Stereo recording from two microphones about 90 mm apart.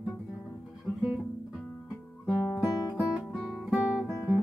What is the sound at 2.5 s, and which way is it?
Guitar, 40° left (ahead or behind).